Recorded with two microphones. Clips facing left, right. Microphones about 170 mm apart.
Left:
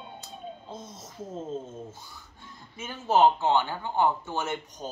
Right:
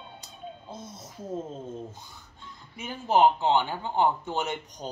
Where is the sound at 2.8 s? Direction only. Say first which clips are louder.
Even; 15° right (ahead or behind).